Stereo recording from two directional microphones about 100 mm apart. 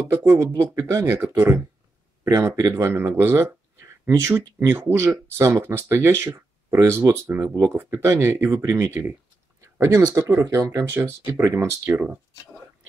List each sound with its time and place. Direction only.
0.1 s speech: 25° right (ahead or behind)
11.0 s speech: 20° right (ahead or behind)
11.9 s speech: 15° right (ahead or behind)